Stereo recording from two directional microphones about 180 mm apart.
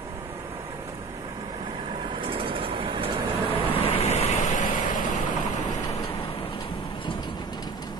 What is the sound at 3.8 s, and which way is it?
Vehicle, 35° left (ahead or behind).